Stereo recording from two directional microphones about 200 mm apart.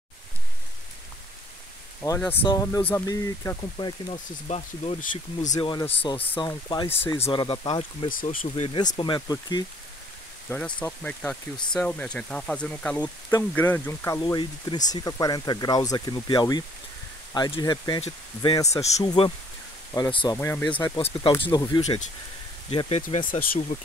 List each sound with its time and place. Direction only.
2.0 s speech: 10° left (ahead or behind); by 5.5 s 35° left (ahead or behind)
5.5 s speech: 20° left (ahead or behind)
6.1 s speech: 10° left (ahead or behind)
6.4 s speech: 20° left (ahead or behind)
6.9 s speech: 10° left (ahead or behind)
7.2 s speech: 30° left (ahead or behind)
8.1 s speech: 45° left (ahead or behind)
8.5 s speech: 25° left (ahead or behind)
10.8 s speech: 5° left (ahead or behind); by 20.3 s 20° left (ahead or behind)
20.3 s speech: 10° left (ahead or behind)
22.7 s speech: 30° left (ahead or behind)